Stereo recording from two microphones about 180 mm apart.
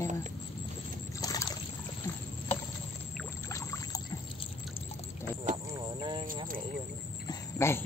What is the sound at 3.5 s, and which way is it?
Boat, 15° left (ahead or behind).